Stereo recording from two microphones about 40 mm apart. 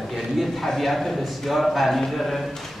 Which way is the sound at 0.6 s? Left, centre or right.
Centre.